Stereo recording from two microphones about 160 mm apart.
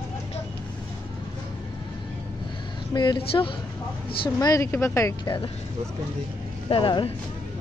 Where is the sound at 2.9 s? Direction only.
30° left (ahead or behind).